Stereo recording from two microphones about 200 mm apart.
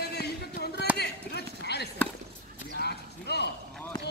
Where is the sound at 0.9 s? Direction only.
55° left (ahead or behind).